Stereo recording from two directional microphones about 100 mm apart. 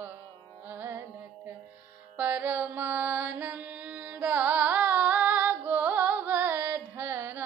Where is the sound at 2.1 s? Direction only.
20° right (ahead or behind).